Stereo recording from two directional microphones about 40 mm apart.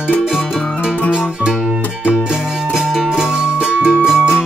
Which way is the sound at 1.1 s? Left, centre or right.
Right.